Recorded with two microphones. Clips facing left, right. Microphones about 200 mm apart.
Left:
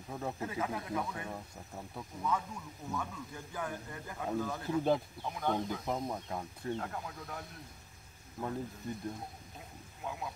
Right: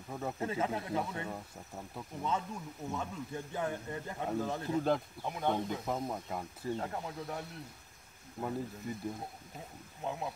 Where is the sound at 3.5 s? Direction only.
25° right (ahead or behind).